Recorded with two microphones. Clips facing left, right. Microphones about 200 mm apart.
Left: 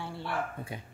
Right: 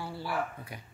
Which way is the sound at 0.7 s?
25° left (ahead or behind).